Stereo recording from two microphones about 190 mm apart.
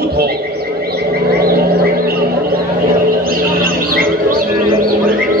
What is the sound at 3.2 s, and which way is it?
Bird, 50° right (ahead or behind).